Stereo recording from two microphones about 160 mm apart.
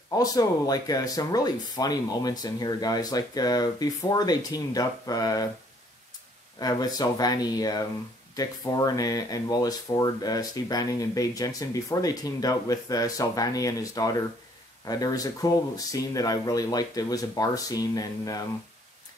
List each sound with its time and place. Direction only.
0.1 s speech: 25° left (ahead or behind)
6.6 s speech: 25° left (ahead or behind)